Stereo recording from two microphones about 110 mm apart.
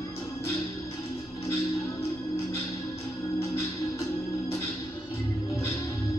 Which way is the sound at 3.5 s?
25° left (ahead or behind).